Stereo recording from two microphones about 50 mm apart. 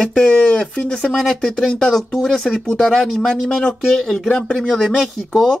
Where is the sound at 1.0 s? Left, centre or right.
Centre.